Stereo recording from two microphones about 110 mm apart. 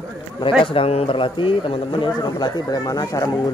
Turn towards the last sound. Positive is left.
turn(degrees=35)  # may be behind; listen again after turning